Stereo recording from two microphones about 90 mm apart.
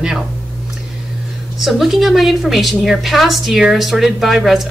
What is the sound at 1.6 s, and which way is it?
A woman's voice, centre (ahead or behind).